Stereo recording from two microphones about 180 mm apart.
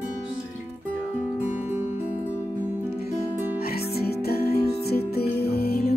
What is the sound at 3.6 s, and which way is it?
Music, 60° left (ahead or behind).